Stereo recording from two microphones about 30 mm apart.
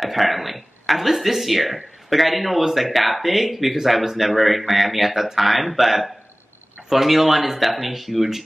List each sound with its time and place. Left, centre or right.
0.0 s speech: centre